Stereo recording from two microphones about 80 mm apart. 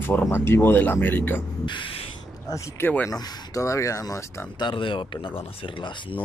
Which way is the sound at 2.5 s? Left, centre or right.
Left.